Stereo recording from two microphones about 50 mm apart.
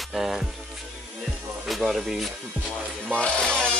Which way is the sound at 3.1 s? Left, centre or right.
Centre.